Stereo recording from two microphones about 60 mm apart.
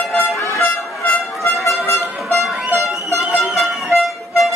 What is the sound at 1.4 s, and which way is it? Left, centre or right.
Music, left.